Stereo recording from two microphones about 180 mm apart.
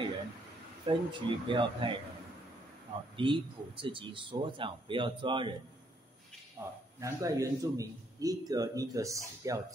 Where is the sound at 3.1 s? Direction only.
30° right (ahead or behind).